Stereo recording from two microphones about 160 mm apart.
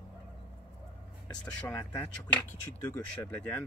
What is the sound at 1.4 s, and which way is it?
Speech, 10° left (ahead or behind).